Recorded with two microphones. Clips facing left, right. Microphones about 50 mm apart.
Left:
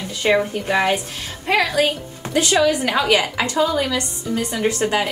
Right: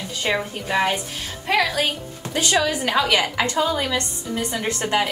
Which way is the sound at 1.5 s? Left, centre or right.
Left.